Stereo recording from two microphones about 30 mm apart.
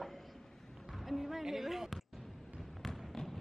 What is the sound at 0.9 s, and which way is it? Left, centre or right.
Music, centre.